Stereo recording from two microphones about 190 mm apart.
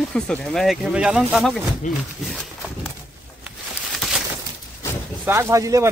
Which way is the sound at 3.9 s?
Centre (ahead or behind).